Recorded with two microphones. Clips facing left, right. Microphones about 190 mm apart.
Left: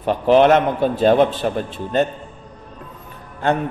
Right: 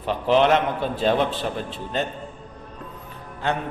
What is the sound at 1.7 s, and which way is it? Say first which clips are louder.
Speech: left 8 dB; 50° left (ahead or behind).